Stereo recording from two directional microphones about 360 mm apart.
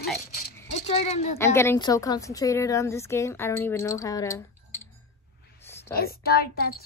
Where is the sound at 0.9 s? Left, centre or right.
Centre.